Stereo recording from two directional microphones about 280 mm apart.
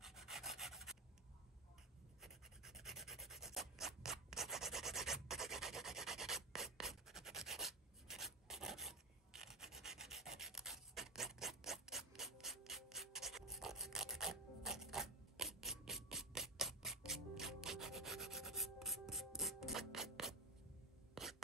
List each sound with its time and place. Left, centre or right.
0.0 s rub: centre
2.2 s rub: centre
21.1 s a sound: centre